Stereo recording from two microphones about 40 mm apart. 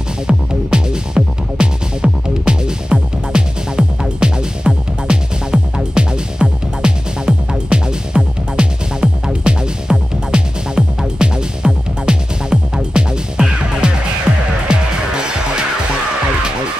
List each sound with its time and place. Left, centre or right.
0.3 s music: centre